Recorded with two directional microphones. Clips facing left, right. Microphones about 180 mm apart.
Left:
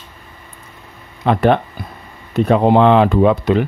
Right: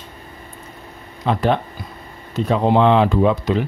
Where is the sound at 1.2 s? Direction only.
60° left (ahead or behind).